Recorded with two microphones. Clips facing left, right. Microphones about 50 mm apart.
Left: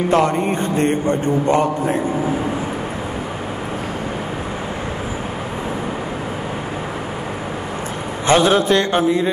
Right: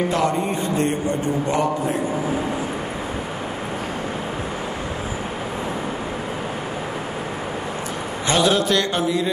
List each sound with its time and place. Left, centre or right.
0.1 s a man's voice: left
8.3 s a man's voice: left